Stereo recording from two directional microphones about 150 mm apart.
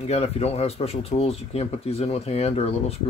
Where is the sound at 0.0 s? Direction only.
45° left (ahead or behind).